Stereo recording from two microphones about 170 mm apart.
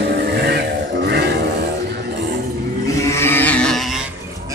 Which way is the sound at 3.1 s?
15° left (ahead or behind).